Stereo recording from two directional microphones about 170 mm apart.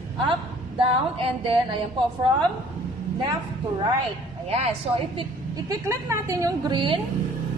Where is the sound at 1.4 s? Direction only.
30° right (ahead or behind).